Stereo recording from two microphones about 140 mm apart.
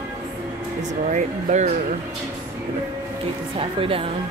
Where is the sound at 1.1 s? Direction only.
55° right (ahead or behind).